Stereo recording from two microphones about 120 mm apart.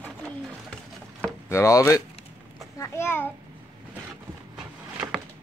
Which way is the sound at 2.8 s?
20° left (ahead or behind).